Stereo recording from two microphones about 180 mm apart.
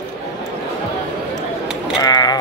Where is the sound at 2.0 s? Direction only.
20° left (ahead or behind).